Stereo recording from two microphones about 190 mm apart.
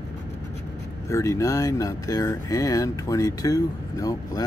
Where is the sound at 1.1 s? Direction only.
15° left (ahead or behind).